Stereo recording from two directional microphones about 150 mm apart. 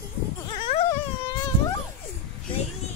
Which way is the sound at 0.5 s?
40° left (ahead or behind).